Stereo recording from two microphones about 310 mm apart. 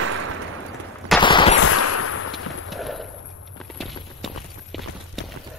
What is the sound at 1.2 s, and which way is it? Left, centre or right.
Gunshot, centre.